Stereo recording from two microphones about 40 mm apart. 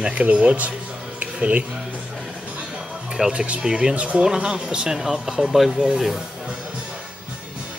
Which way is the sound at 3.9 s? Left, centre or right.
Right.